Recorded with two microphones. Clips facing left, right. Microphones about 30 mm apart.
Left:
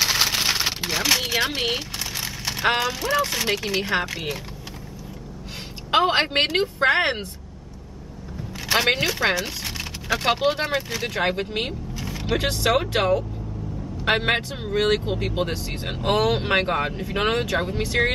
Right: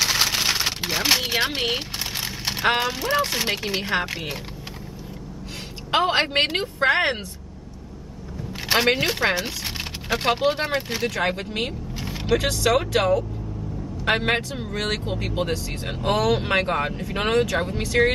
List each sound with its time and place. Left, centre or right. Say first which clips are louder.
0.0 s a sound: even; centre
2.7 s speech: even; centre
5.9 s a woman's voice: left 1 dB; centre
8.7 s a woman's voice: even; centre
9.3 s a sound: even; centre
10.1 s a woman's voice: even; centre
11.1 s speech: left 3 dB; centre
12.0 s vehicle: right 1 dB; centre
12.4 s speech: left 1 dB; centre